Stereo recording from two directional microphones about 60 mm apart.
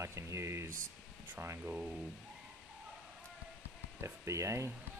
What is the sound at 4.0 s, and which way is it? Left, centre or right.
Speech, right.